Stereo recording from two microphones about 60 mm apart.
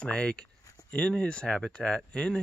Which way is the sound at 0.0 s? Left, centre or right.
Centre.